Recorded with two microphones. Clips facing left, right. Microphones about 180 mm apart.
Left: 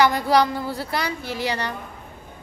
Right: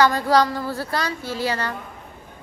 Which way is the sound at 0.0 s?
15° left (ahead or behind).